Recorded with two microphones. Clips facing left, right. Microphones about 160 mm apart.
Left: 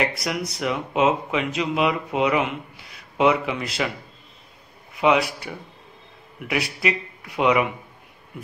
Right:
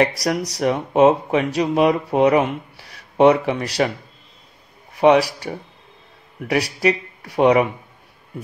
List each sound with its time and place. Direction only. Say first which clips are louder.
0.0 s speech: right 6 dB; 40° right (ahead or behind)
4.9 s speech: right 6 dB; 40° right (ahead or behind)